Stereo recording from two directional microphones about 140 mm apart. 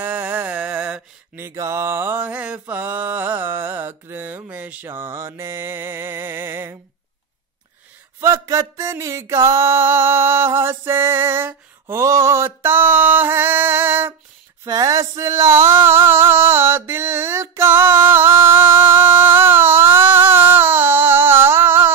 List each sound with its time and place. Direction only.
0.0 s mantra: 15° right (ahead or behind)
8.2 s mantra: 20° right (ahead or behind)
14.6 s male singing: 25° right (ahead or behind)